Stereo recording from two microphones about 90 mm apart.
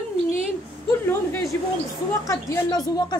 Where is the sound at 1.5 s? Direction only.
25° left (ahead or behind).